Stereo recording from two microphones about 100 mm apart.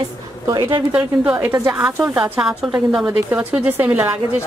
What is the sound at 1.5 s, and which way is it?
Speech, 30° right (ahead or behind).